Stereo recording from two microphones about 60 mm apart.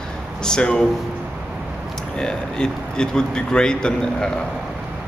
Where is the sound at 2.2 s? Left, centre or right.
Centre.